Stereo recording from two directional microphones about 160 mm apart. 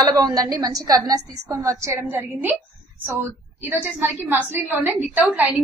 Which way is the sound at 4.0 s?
10° right (ahead or behind).